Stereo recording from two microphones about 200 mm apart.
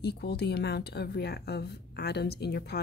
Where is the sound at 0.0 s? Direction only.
55° left (ahead or behind).